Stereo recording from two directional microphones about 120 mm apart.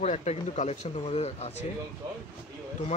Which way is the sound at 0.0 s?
70° left (ahead or behind).